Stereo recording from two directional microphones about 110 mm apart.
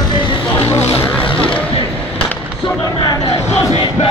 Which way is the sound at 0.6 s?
25° left (ahead or behind).